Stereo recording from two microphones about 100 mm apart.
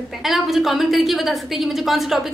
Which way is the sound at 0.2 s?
Centre (ahead or behind).